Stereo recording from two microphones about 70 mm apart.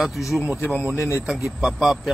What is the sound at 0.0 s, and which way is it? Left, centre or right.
A man's voice, centre.